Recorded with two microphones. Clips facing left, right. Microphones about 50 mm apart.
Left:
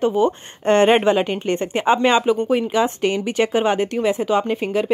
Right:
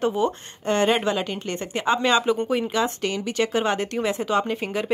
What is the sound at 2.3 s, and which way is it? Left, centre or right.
A woman's voice, centre.